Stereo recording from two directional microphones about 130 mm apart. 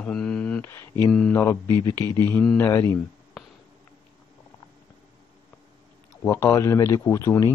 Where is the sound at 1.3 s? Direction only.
20° left (ahead or behind).